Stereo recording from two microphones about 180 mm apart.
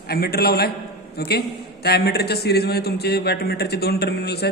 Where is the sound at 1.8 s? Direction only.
60° left (ahead or behind).